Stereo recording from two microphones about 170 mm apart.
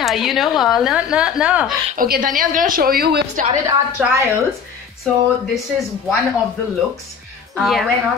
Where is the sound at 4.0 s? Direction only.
5° right (ahead or behind).